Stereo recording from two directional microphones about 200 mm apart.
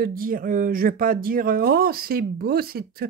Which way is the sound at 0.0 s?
45° right (ahead or behind).